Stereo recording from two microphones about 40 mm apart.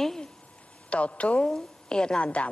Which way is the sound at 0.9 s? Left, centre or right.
Left.